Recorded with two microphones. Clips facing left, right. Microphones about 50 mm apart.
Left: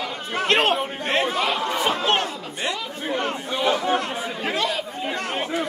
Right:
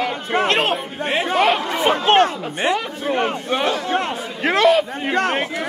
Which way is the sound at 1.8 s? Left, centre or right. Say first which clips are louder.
Right 9 dB; right.